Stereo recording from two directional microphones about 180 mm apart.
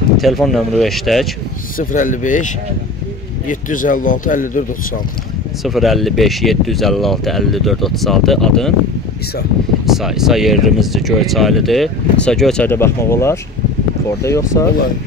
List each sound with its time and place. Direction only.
0.2 s speech: centre (ahead or behind)
1.8 s a man's voice: 50° left (ahead or behind)
5.6 s speech: centre (ahead or behind)
9.8 s speech: centre (ahead or behind); by 14.7 s 15° left (ahead or behind)